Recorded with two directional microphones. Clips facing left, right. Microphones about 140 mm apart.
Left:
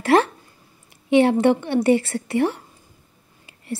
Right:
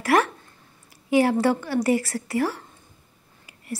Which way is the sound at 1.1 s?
25° left (ahead or behind).